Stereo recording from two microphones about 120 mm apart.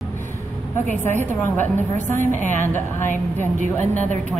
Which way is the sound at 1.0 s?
20° left (ahead or behind).